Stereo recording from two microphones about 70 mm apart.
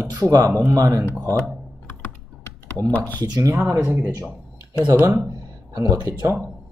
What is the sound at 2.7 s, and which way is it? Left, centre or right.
Speech, left.